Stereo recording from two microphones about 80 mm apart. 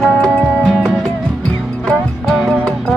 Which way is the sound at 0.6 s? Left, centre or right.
Centre.